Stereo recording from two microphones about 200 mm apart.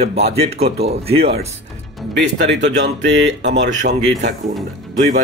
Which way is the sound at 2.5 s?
60° right (ahead or behind).